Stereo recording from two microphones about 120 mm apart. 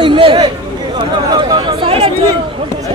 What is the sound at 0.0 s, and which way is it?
Chatter, 45° right (ahead or behind).